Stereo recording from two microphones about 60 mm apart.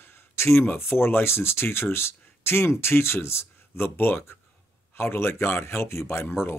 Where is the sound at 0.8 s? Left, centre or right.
Left.